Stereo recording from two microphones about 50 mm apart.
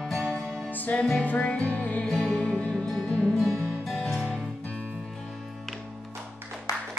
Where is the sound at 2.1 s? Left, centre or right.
Centre.